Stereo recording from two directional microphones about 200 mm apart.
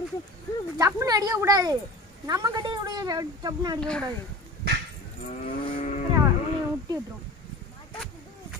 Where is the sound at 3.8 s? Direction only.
5° left (ahead or behind).